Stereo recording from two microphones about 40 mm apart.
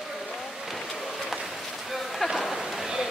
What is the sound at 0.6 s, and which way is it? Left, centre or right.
Vehicle, centre.